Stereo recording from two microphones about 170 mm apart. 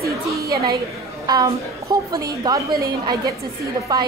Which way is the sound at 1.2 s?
25° right (ahead or behind).